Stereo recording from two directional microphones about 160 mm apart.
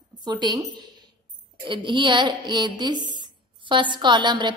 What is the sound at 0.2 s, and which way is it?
A woman's voice, 25° right (ahead or behind).